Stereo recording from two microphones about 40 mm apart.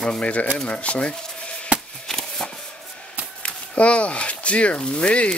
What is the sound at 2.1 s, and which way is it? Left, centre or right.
Shuffling cards, centre.